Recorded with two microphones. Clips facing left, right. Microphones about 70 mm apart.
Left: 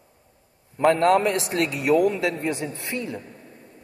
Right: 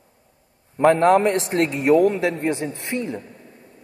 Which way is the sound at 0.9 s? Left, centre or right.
Right.